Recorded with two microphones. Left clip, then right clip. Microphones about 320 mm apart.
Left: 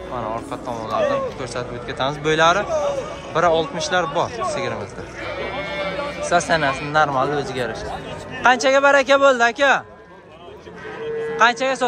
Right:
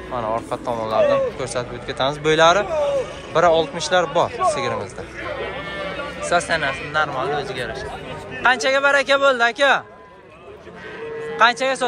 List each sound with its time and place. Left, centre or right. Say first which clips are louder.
0.1 s a man's voice: right 4 dB; centre
5.4 s a sound: left 5 dB; left
6.2 s a man's voice: left 1 dB; centre
11.3 s a man's voice: right 1 dB; centre